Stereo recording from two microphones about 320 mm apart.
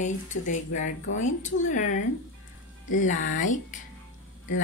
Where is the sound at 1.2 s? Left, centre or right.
Left.